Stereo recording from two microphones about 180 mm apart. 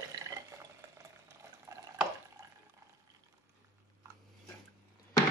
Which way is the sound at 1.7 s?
20° right (ahead or behind).